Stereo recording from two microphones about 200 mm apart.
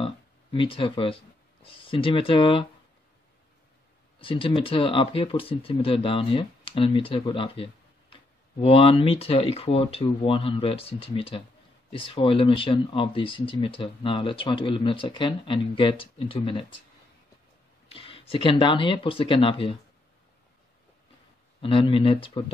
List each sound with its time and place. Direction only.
0.0 s speech: 25° left (ahead or behind)
4.2 s speech: 25° left (ahead or behind)
17.8 s speech: 30° left (ahead or behind)
21.5 s speech: 25° left (ahead or behind)